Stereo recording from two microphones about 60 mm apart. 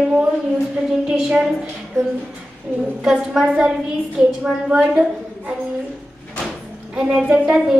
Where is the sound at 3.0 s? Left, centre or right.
Centre.